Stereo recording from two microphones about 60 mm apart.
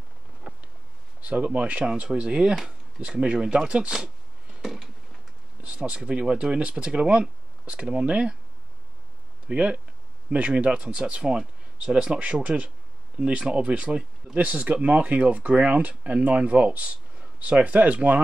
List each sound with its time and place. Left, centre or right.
1.2 s speech: right
3.3 s speech: centre
4.6 s a sound: centre
5.6 s speech: right
9.5 s speech: right